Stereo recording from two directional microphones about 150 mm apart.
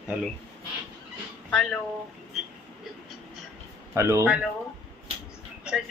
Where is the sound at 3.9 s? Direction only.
15° right (ahead or behind).